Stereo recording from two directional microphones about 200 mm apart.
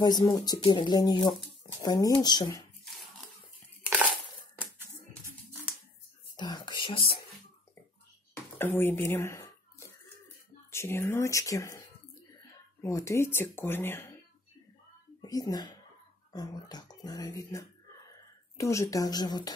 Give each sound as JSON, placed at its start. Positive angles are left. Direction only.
{"t": 0.0, "sound": "speech", "side_deg": 20}
{"t": 2.8, "sound": "a sound", "side_deg": 0}
{"t": 3.8, "sound": "crushing", "side_deg": -5}
{"t": 6.3, "sound": "whispering", "side_deg": 20}
{"t": 8.5, "sound": "a sound", "side_deg": 10}
{"t": 10.7, "sound": "speech", "side_deg": 10}
{"t": 15.2, "sound": "speech", "side_deg": 20}